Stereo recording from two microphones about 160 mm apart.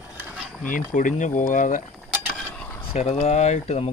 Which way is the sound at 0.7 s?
55° left (ahead or behind).